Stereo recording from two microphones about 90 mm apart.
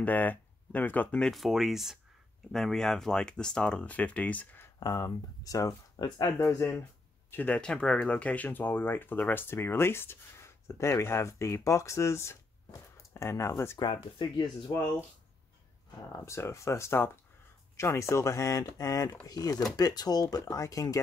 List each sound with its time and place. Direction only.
0.0 s speech: 20° left (ahead or behind)
1.3 s speech: centre (ahead or behind); by 4.6 s 15° left (ahead or behind)
4.7 s speech: 45° left (ahead or behind)
7.2 s speech: 20° left (ahead or behind)
13.7 s speech: 55° left (ahead or behind)
16.3 s speech: 30° left (ahead or behind)